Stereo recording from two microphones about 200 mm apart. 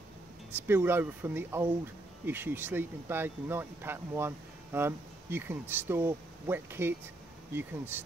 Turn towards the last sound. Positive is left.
turn(degrees=-10)  # may be behind; listen again after turning